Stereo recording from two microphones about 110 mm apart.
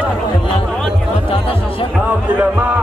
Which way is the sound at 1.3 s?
55° left (ahead or behind).